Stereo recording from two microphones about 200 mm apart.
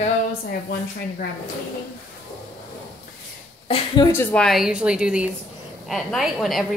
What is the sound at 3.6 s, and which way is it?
Speech, 25° left (ahead or behind).